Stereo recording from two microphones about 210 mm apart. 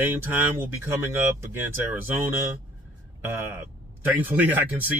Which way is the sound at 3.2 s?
10° right (ahead or behind).